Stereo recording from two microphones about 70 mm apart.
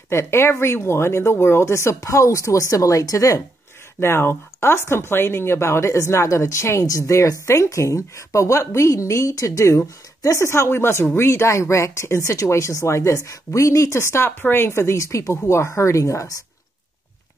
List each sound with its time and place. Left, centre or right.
0.1 s a woman's voice: left
4.0 s a woman's voice: left